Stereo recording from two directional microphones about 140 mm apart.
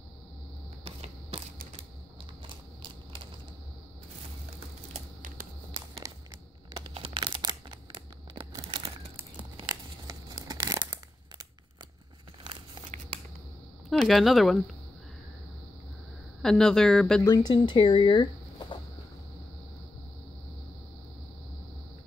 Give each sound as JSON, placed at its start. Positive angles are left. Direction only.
{"t": 0.8, "sound": "a sound", "side_deg": -45}
{"t": 2.4, "sound": "a sound", "side_deg": -35}
{"t": 6.0, "sound": "crumpling", "side_deg": -20}
{"t": 13.8, "sound": "speech", "side_deg": 0}
{"t": 16.4, "sound": "speech", "side_deg": 5}
{"t": 17.2, "sound": "speech", "side_deg": 30}